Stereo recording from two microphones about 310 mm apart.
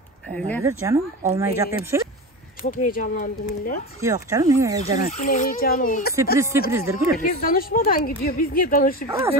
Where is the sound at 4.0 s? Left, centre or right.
Centre.